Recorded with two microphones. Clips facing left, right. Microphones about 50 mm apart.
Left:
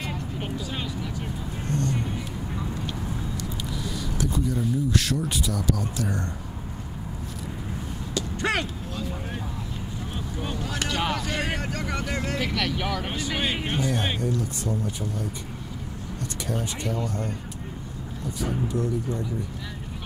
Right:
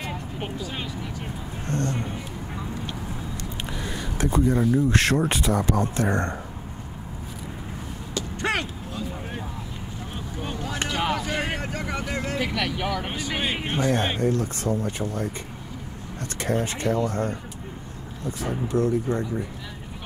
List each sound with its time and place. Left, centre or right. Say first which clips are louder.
1.7 s a sound: right 1 dB; right
3.3 s a sound: even; right
4.7 s speech: right 5 dB; right
8.1 s a sound: even; right
8.5 s vehicle: even; centre
10.4 s vehicle: right 1 dB; right
13.2 s speech: even; centre
13.7 s speech: right 3 dB; right
16.3 s speech: right 6 dB; right
18.7 s speech: right 4 dB; right